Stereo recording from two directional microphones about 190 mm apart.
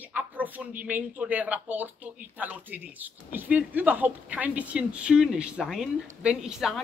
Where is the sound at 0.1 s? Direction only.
10° right (ahead or behind).